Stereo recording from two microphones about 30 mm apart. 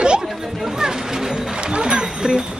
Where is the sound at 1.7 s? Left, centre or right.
Right.